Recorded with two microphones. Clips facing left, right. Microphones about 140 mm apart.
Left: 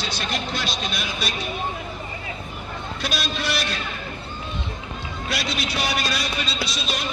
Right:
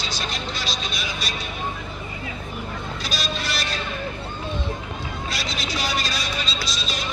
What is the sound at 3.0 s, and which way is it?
Vehicle, 60° left (ahead or behind).